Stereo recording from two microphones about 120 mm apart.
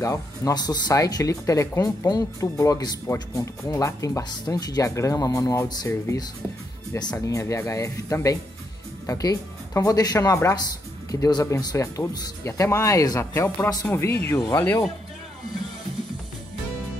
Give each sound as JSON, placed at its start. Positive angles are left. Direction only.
{"t": 0.0, "sound": "speech", "side_deg": 25}